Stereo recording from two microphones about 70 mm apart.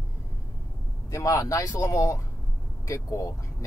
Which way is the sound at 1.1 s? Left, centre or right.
Left.